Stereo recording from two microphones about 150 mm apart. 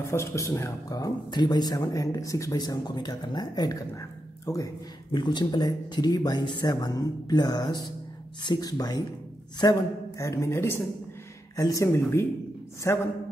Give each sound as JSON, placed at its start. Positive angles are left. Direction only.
{"t": 0.0, "sound": "speech", "side_deg": 20}